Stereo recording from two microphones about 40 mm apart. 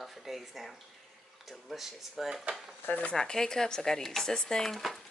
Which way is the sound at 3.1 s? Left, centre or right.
Centre.